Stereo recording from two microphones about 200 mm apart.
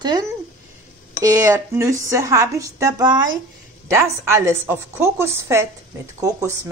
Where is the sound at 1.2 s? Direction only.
15° right (ahead or behind).